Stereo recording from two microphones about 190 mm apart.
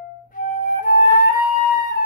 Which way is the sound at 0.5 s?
45° left (ahead or behind).